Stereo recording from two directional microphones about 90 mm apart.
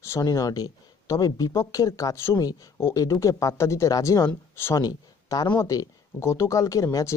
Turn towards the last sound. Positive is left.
turn(degrees=40)  # may be behind; listen again after turning